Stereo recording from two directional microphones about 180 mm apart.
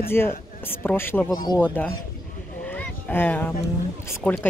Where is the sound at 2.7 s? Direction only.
10° left (ahead or behind).